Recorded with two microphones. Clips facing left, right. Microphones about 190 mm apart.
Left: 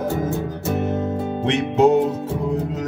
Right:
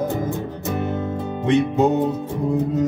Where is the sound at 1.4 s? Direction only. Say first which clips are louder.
Even; 90° left.